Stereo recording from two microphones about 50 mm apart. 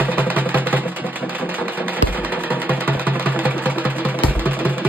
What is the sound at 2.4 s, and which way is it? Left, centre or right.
Music, right.